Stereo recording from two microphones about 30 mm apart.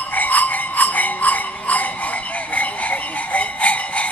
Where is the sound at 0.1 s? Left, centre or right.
Left.